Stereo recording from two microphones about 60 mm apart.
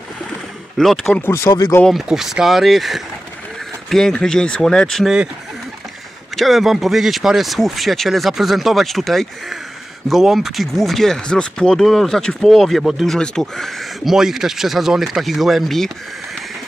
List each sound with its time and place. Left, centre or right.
0.7 s speech: centre
1.5 s speech: left
2.0 s speech: centre
3.9 s speech: centre
6.3 s speech: centre
11.8 s speech: centre
14.1 s speech: centre